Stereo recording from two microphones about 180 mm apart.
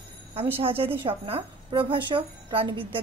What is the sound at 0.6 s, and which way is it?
A woman's voice, 30° right (ahead or behind).